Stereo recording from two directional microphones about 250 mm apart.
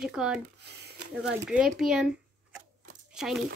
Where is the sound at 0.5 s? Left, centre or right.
Right.